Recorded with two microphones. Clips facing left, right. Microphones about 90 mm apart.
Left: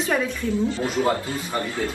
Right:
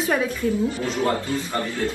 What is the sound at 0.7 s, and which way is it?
A man's voice, 20° left (ahead or behind).